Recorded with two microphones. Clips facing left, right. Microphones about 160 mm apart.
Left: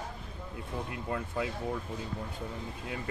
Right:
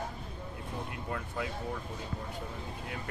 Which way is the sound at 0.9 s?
25° left (ahead or behind).